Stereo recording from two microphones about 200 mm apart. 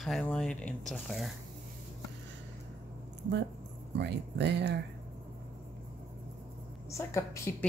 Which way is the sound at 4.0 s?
60° right (ahead or behind).